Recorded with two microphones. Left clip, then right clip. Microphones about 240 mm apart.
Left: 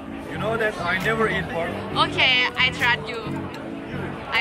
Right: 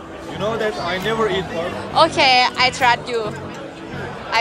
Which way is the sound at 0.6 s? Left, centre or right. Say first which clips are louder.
Right 2 dB; right.